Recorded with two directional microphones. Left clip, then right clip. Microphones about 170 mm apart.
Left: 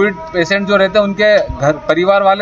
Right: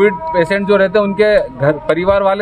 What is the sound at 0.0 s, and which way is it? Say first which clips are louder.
A man's voice: right 2 dB; 45° right (ahead or behind).